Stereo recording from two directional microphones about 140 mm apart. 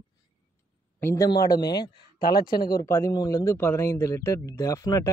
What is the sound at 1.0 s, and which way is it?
Speech, 20° left (ahead or behind).